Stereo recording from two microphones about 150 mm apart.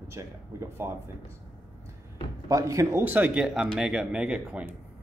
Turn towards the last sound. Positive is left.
turn(degrees=-10)  # may be behind; listen again after turning